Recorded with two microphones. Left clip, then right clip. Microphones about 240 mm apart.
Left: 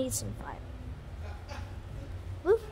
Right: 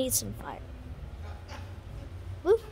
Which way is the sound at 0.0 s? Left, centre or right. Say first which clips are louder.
Right 3 dB; centre.